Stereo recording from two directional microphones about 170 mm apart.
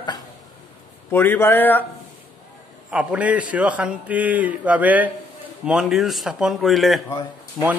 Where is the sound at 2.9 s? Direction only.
10° right (ahead or behind).